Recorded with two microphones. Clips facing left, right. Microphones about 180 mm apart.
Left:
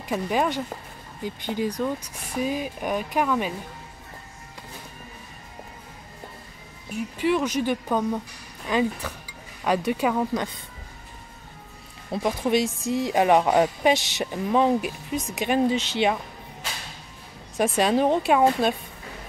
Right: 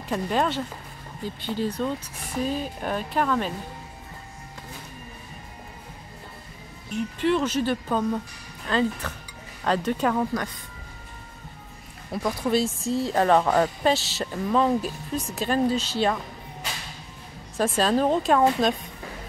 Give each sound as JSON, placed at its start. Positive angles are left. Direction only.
{"t": 0.1, "sound": "speech", "side_deg": 10}
{"t": 6.9, "sound": "speech", "side_deg": 10}
{"t": 12.1, "sound": "speech", "side_deg": 20}
{"t": 17.6, "sound": "speech", "side_deg": 15}